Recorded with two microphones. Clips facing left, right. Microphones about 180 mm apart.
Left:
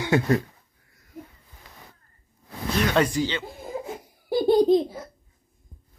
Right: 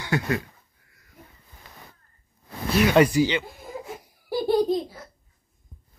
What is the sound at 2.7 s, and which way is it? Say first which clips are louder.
Speech: right 4 dB; 10° right (ahead or behind).